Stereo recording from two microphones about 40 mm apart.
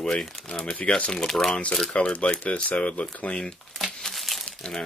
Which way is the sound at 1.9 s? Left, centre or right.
Left.